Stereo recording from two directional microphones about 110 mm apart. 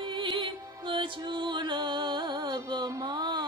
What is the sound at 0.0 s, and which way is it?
Music, 50° right (ahead or behind).